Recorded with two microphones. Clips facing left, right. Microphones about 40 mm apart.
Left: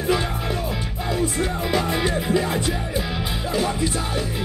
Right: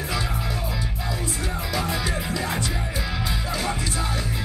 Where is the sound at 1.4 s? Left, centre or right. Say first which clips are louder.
Left 5 dB; left.